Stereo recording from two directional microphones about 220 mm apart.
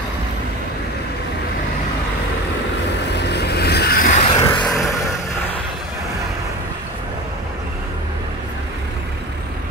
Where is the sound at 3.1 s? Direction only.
50° left (ahead or behind).